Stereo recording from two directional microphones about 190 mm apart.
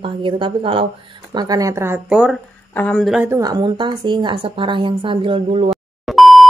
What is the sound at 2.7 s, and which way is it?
Speech, 5° left (ahead or behind).